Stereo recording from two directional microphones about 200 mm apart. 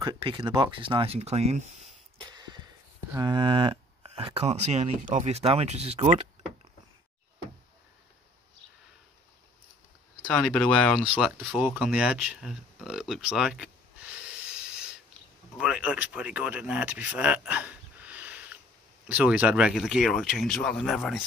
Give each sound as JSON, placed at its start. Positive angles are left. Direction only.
{"t": 0.0, "sound": "speech", "side_deg": -25}
{"t": 2.2, "sound": "a sound", "side_deg": -20}
{"t": 3.1, "sound": "speech", "side_deg": -20}
{"t": 10.2, "sound": "speech", "side_deg": 5}
{"t": 11.5, "sound": "a sound", "side_deg": 0}
{"t": 15.5, "sound": "speech", "side_deg": -5}